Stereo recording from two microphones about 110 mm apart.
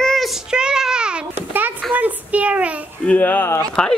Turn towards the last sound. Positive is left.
turn(degrees=10)  # may be behind; listen again after turning